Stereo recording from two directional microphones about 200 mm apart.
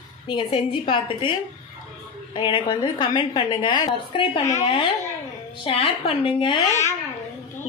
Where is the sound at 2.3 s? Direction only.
25° left (ahead or behind).